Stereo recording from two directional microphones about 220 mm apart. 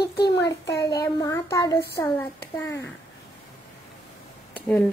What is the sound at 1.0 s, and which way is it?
A child's voice, 15° left (ahead or behind).